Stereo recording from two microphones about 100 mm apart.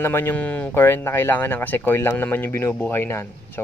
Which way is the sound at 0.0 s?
20° left (ahead or behind).